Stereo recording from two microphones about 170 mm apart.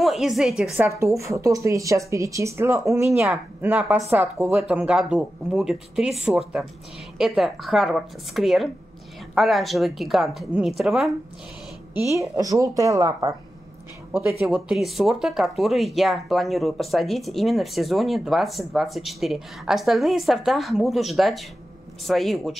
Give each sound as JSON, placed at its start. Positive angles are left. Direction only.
{"t": 0.0, "sound": "a woman's voice", "side_deg": 0}
{"t": 0.7, "sound": "speech", "side_deg": -15}
{"t": 12.1, "sound": "speech", "side_deg": -20}
{"t": 14.5, "sound": "speech", "side_deg": 0}